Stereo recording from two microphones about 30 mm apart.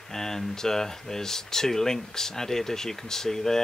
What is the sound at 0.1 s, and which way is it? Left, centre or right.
Speech, centre.